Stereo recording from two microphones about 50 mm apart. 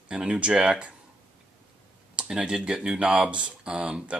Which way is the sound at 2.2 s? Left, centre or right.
Centre.